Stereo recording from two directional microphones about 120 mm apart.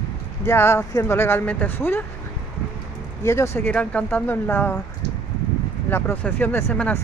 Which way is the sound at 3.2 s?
20° left (ahead or behind).